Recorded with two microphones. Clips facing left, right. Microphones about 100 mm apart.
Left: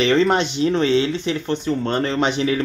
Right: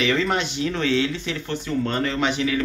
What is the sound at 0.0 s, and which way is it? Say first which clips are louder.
Speech: left 5 dB; 30° left (ahead or behind).